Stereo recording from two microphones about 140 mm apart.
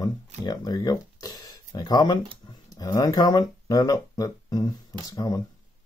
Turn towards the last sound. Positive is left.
turn(degrees=30)  # may be behind; listen again after turning